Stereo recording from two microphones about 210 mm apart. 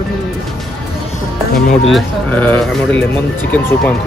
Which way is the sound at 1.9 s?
10° left (ahead or behind).